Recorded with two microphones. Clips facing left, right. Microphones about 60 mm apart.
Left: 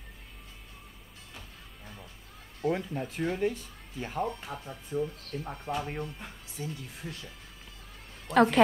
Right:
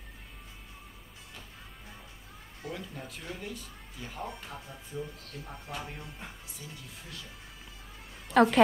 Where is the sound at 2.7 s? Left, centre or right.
Left.